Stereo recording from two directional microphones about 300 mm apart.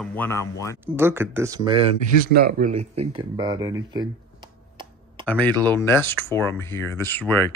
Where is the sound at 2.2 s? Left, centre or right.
Right; by 4.1 s centre.